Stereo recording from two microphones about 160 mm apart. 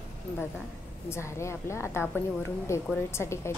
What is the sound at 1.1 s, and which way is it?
Speech, 15° left (ahead or behind).